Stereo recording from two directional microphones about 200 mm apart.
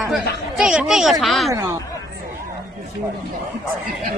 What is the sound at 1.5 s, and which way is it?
Speech, 15° right (ahead or behind).